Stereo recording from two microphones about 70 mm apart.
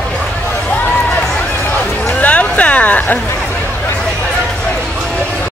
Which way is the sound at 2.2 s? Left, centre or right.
Left.